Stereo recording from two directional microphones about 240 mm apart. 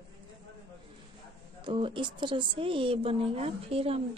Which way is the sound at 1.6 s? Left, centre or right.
Right.